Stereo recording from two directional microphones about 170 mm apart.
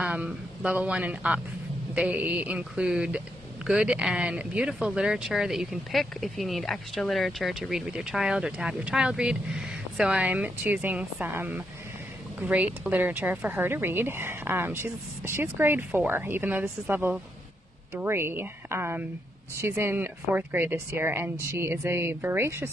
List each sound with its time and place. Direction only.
0.0 s speech: 5° right (ahead or behind)